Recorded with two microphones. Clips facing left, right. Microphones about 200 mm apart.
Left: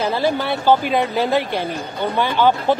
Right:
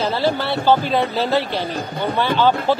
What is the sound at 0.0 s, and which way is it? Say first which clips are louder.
Speech: even; 15° left (ahead or behind).